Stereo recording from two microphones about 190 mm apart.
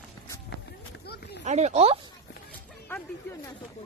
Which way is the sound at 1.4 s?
40° right (ahead or behind).